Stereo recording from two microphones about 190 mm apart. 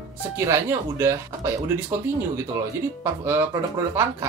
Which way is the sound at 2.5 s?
15° right (ahead or behind).